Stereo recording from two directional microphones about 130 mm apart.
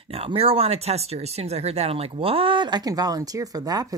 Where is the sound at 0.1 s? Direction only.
50° right (ahead or behind).